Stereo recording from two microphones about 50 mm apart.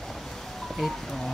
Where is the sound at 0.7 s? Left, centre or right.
Centre.